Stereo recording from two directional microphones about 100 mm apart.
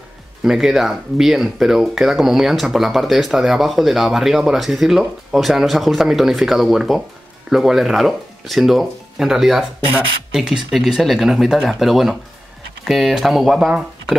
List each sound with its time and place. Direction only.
0.4 s speech: 5° right (ahead or behind)